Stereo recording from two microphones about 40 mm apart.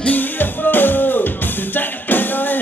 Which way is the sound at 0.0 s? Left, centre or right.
Left.